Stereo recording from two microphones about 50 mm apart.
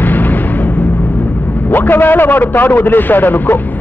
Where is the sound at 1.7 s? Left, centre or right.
Left.